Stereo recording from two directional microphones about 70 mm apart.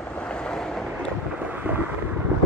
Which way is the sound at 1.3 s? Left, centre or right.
Right.